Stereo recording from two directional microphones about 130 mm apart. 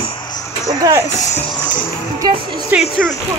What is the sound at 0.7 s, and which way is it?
Speech, 25° right (ahead or behind).